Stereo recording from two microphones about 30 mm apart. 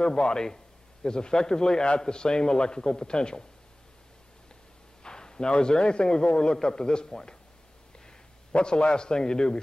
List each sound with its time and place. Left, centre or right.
0.0 s a man's voice: left
5.0 s a man's voice: left
8.5 s a man's voice: left